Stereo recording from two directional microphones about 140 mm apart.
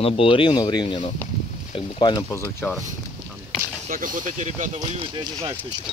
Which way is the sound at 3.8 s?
75° right (ahead or behind).